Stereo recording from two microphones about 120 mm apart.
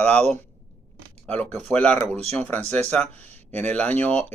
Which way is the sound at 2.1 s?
60° right (ahead or behind).